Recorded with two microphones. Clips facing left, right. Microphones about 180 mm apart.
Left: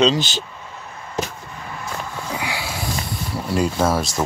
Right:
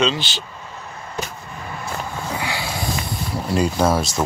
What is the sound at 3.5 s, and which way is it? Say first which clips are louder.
Speech: right 1 dB; centre (ahead or behind).